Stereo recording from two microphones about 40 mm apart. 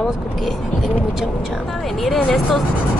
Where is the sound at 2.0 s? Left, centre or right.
Centre.